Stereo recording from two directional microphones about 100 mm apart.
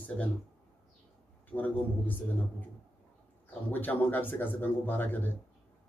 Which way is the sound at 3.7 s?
20° left (ahead or behind).